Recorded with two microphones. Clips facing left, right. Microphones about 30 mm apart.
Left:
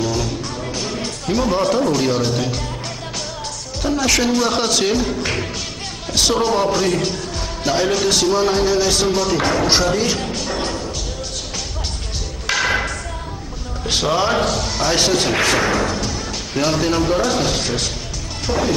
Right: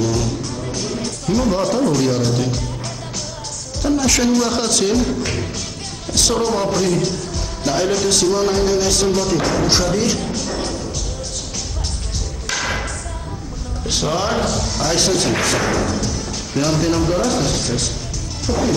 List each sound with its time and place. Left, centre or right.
0.0 s music: centre
3.8 s speech: centre
12.4 s a sound: centre
13.8 s speech: centre